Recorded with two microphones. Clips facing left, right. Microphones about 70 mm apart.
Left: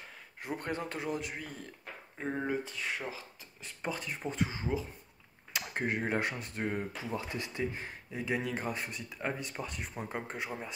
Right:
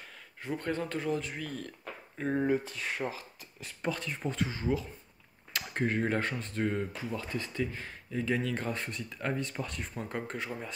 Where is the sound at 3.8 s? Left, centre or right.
Centre.